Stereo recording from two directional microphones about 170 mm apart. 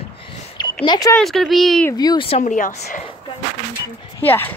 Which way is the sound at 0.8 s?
25° left (ahead or behind).